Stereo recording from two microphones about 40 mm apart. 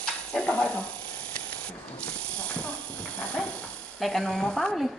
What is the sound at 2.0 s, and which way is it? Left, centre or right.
Snake, left.